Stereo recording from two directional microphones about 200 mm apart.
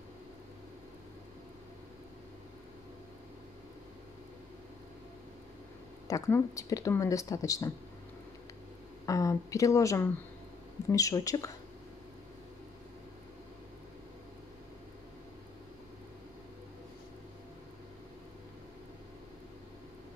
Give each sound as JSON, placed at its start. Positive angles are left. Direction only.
{"t": 6.0, "sound": "speech", "side_deg": 15}
{"t": 9.0, "sound": "a woman's voice", "side_deg": 15}